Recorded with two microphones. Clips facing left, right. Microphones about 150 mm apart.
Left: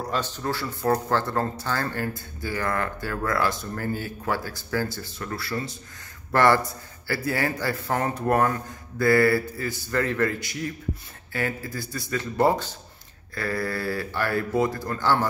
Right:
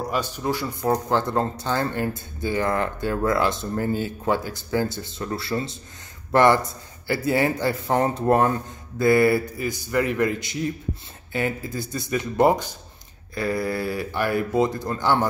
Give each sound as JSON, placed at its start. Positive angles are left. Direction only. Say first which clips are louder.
{"t": 0.0, "sound": "speech", "louder": "right 2 dB", "side_deg": -10}